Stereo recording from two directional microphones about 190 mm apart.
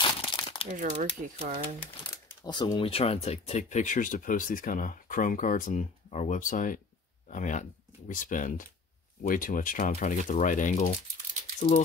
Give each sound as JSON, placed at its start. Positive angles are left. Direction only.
{"t": 0.0, "sound": "crumpling", "side_deg": 25}
{"t": 0.7, "sound": "speech", "side_deg": -45}
{"t": 2.4, "sound": "speech", "side_deg": 25}